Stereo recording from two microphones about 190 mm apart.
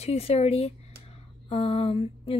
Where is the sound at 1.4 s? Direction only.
30° left (ahead or behind).